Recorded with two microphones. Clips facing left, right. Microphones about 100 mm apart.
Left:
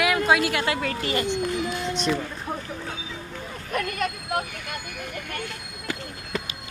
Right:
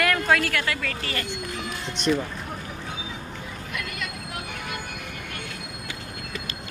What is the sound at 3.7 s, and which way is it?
Speech, 45° left (ahead or behind).